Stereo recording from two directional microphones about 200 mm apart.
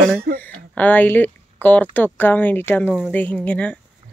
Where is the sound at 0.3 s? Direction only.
45° right (ahead or behind).